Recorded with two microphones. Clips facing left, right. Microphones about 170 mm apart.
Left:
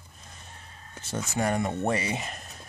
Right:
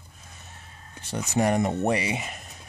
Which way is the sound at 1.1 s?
15° right (ahead or behind).